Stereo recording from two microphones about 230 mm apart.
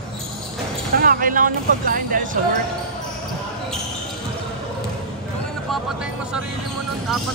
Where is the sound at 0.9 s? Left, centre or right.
Right.